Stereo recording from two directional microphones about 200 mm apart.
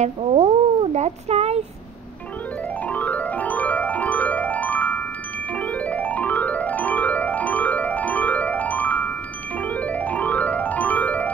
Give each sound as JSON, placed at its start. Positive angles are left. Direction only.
{"t": 0.0, "sound": "speech", "side_deg": -30}
{"t": 2.9, "sound": "music", "side_deg": 5}